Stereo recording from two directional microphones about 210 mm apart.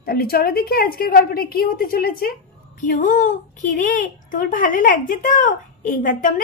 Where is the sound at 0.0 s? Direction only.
45° left (ahead or behind).